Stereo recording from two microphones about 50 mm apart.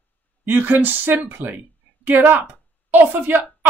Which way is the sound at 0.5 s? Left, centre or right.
Right.